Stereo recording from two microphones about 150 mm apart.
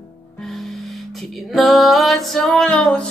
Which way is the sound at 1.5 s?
Centre (ahead or behind).